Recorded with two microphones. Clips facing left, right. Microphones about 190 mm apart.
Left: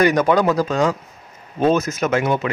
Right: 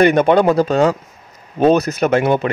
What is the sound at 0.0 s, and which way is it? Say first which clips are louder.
Speech: right 4 dB; 25° right (ahead or behind).